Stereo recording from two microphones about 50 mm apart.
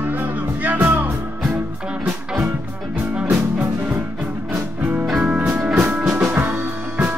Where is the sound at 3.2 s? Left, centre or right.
Right.